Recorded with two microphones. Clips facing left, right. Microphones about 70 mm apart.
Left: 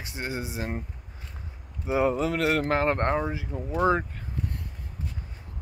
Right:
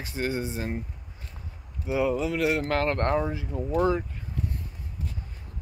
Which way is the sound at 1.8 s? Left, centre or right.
Left.